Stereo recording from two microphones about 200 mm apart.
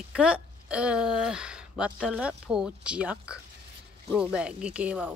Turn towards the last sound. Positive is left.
turn(degrees=-5)  # may be behind; listen again after turning